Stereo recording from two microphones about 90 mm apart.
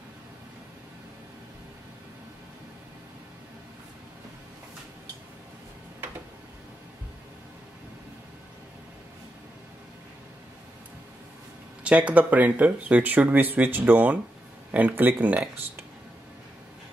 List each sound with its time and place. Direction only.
11.8 s speech: 15° right (ahead or behind)